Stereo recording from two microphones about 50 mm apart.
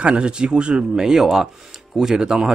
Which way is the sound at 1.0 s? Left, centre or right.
Centre.